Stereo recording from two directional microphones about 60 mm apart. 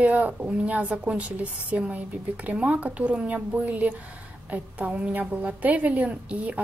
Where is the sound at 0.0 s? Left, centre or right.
Right.